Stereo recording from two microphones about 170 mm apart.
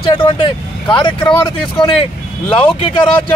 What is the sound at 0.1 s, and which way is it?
A man's voice, 30° left (ahead or behind).